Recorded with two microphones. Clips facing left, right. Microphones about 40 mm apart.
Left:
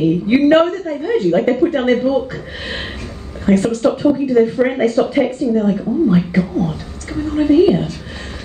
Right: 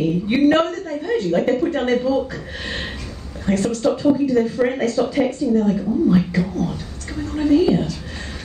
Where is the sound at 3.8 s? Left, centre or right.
Left.